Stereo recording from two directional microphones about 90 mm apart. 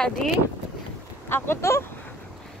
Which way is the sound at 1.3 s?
30° left (ahead or behind).